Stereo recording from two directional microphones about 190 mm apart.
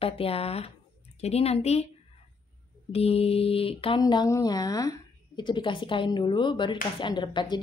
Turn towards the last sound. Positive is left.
turn(degrees=25)  # may be behind; listen again after turning